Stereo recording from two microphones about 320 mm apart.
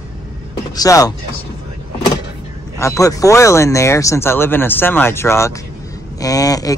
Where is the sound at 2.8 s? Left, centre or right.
Centre.